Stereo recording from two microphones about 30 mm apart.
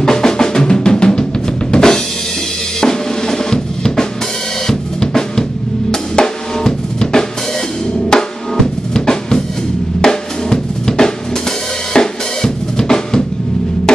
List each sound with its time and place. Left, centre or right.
0.0 s drum: left
1.7 s drum kit: left
8.1 s drum: left
11.9 s drum kit: left
13.9 s music: left